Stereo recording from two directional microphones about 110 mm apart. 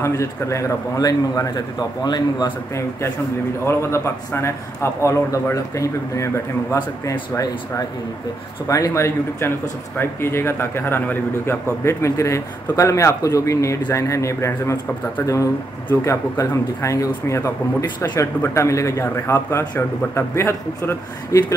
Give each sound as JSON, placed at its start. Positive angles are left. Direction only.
{"t": 0.0, "sound": "a man's voice", "side_deg": 25}
{"t": 3.6, "sound": "a man's voice", "side_deg": 25}